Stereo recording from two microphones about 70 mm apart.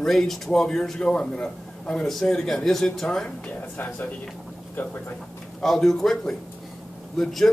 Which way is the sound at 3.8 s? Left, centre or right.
Left.